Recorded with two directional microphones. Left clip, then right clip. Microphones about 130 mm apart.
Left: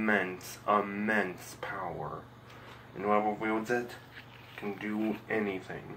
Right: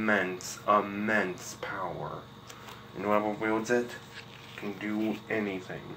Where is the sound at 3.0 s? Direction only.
15° right (ahead or behind).